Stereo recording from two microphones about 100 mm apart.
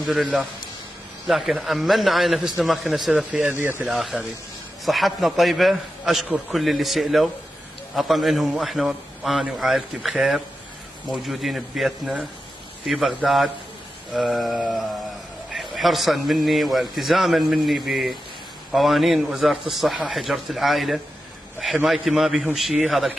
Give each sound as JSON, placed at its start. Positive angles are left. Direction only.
{"t": 0.0, "sound": "a man's voice", "side_deg": -5}
{"t": 3.3, "sound": "speech", "side_deg": -15}
{"t": 3.8, "sound": "a man's voice", "side_deg": -5}